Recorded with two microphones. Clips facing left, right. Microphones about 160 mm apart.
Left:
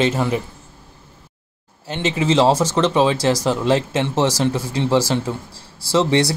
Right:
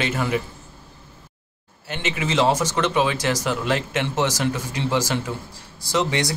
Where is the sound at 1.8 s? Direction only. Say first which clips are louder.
Left 7 dB; 30° left (ahead or behind).